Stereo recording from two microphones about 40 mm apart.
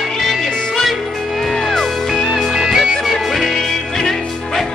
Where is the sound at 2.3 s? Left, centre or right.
Centre.